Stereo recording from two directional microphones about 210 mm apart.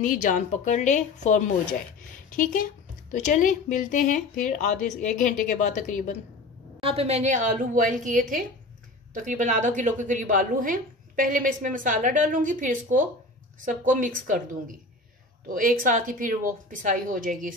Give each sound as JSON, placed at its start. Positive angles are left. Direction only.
{"t": 0.0, "sound": "speech", "side_deg": 40}
{"t": 6.8, "sound": "a woman's voice", "side_deg": -30}